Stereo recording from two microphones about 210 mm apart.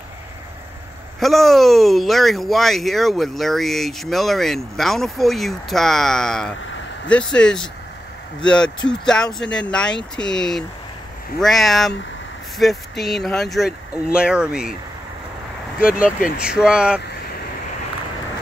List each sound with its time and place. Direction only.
1.2 s speech: centre (ahead or behind)
15.9 s speech: 40° left (ahead or behind)
16.3 s speech: 5° right (ahead or behind)